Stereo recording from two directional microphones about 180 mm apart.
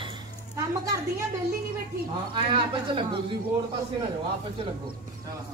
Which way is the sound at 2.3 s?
25° right (ahead or behind).